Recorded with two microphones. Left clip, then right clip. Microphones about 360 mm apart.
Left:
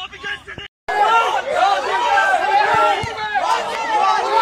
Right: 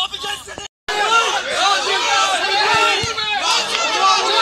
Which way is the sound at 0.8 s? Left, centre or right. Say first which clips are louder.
Left 1 dB; left.